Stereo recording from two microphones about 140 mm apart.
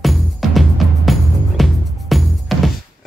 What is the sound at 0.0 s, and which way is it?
Music, centre (ahead or behind).